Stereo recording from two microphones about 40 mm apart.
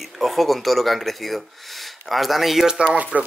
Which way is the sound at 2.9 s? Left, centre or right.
Right.